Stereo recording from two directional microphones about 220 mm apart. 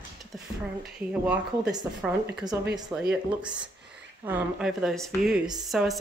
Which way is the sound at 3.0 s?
5° right (ahead or behind).